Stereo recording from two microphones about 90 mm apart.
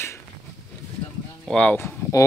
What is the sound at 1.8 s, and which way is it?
Speech, 25° left (ahead or behind).